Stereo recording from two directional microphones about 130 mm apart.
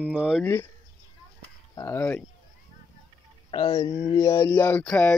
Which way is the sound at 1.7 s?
20° left (ahead or behind).